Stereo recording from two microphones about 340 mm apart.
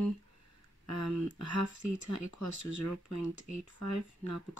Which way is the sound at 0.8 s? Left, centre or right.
Left.